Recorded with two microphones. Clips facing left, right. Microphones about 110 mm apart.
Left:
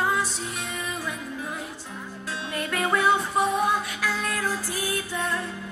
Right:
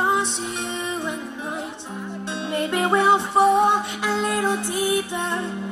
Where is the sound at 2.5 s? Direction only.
25° right (ahead or behind).